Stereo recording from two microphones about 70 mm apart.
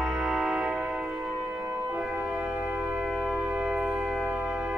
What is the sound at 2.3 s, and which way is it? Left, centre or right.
Music, right.